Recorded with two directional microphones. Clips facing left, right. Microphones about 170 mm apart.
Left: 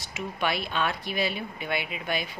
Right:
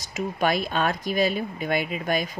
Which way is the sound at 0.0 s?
40° right (ahead or behind).